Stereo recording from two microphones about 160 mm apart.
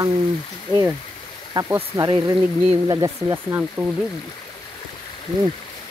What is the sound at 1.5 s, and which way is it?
Speech, 20° right (ahead or behind).